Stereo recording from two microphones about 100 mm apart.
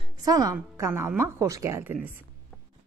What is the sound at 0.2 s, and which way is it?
A woman's voice, 35° right (ahead or behind).